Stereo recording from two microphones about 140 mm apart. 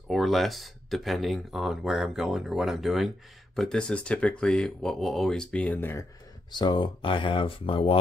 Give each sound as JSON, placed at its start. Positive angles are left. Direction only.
{"t": 0.1, "sound": "speech", "side_deg": 0}
{"t": 6.5, "sound": "speech", "side_deg": 30}